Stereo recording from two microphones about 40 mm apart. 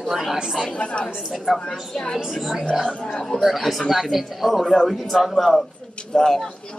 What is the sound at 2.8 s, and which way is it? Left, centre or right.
Speech, centre.